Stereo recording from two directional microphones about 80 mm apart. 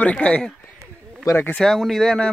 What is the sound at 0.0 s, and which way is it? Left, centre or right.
Speech, centre.